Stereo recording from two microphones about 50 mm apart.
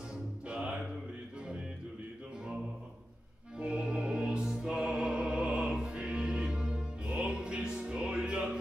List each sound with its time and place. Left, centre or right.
0.5 s music: right
3.5 s music: right